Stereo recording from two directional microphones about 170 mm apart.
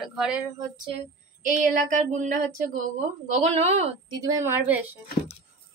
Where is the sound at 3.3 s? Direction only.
40° right (ahead or behind).